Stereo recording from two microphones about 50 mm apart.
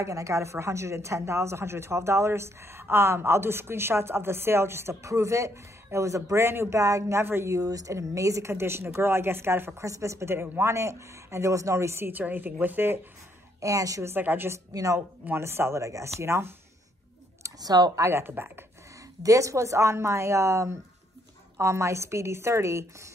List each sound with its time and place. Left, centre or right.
0.0 s a woman's voice: right
7.2 s speech: right
7.5 s a woman's voice: right
9.8 s a woman's voice: right
10.6 s a woman's voice: right
12.1 s a woman's voice: right
13.6 s a woman's voice: right
14.1 s speech: right
15.3 s a woman's voice: right
17.9 s a woman's voice: right
18.2 s speech: right
19.2 s a woman's voice: right